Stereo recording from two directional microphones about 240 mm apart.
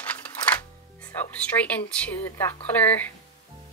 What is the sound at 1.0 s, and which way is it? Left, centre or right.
A woman's voice, centre.